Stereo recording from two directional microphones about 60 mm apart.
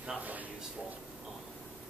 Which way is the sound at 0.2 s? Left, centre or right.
Right.